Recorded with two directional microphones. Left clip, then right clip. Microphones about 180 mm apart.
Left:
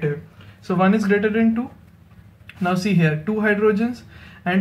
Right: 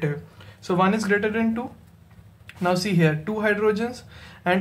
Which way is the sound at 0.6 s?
25° right (ahead or behind).